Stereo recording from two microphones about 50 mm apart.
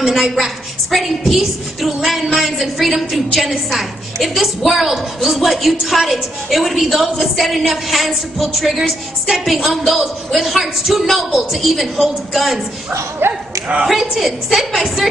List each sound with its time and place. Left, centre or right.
0.0 s a woman's voice: centre
13.2 s speech: right
13.8 s a woman's voice: centre